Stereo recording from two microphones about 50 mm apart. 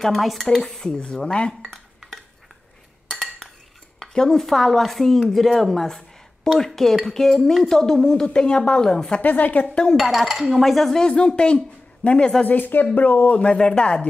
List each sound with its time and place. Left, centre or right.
0.0 s speech: centre
0.9 s speech: centre
3.1 s cutlery: centre
4.1 s speech: centre
8.3 s speech: centre
9.2 s a woman's voice: left
9.8 s speech: centre
10.6 s speech: centre
11.1 s a man's voice: left
12.4 s a woman's voice: left; by 14.0 s centre